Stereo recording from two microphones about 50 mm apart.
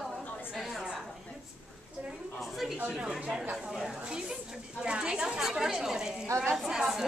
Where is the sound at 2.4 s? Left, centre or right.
Centre.